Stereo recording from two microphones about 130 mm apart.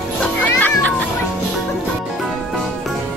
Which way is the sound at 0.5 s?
15° left (ahead or behind).